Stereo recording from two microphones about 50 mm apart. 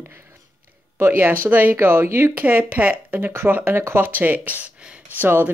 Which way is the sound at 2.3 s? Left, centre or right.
Right.